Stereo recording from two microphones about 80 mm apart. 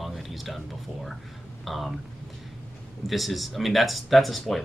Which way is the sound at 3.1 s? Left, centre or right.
Centre.